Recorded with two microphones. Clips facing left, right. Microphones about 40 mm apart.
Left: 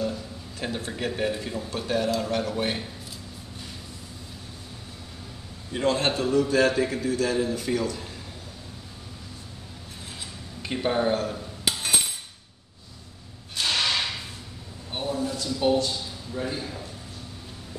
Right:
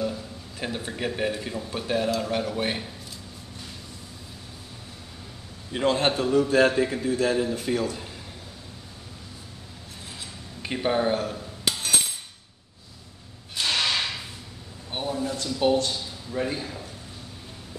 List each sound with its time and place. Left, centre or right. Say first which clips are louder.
0.0 s a man's voice: even; centre
5.7 s speech: right 1 dB; right
10.6 s speech: even; centre
11.3 s cutlery: even; centre
13.6 s whip: even; centre
14.9 s a sound: even; centre
15.3 s a man's voice: right 1 dB; right
16.4 s a man's voice: right 3 dB; right